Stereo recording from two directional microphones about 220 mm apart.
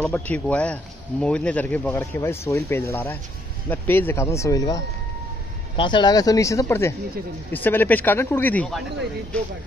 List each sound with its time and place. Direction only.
0.0 s speech: 5° left (ahead or behind)